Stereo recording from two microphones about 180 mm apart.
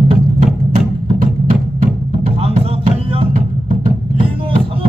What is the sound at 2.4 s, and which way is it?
Music, 30° right (ahead or behind).